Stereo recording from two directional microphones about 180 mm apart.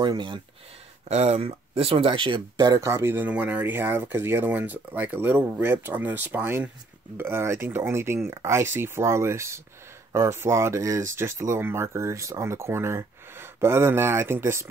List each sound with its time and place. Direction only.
0.0 s speech: 25° right (ahead or behind)
1.0 s speech: 35° right (ahead or behind); by 14.7 s 15° right (ahead or behind)